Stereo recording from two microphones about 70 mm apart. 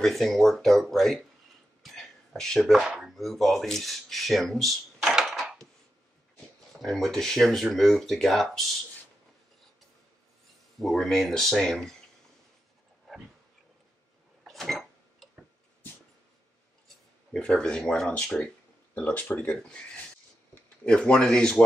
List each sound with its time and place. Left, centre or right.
0.0 s speech: centre
1.8 s a sound: centre
3.0 s speech: centre
5.1 s dishes: centre
5.4 s dishes: centre
6.8 s speech: centre
10.8 s speech: centre
13.1 s dog: centre
14.5 s a sound: centre
16.8 s speech: centre
20.8 s speech: centre